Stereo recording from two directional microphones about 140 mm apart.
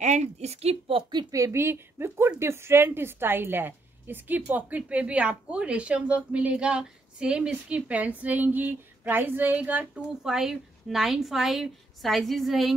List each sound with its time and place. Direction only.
0.0 s a woman's voice: 55° right (ahead or behind)
1.3 s a woman's voice: 20° right (ahead or behind); by 12.7 s centre (ahead or behind)